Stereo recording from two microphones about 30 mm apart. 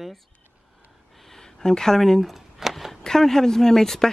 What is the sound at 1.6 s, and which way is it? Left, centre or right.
Speech, centre.